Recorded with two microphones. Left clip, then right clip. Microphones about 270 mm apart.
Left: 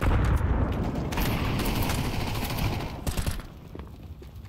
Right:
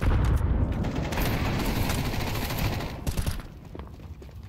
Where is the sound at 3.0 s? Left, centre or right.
Centre.